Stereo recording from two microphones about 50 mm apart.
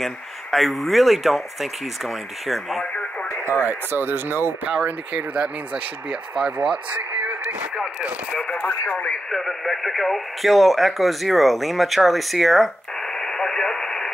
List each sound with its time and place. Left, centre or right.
0.0 s speech: centre
2.8 s radio: left
3.5 s speech: right
4.6 s speech: right
8.5 s speech: left
9.3 s speech: centre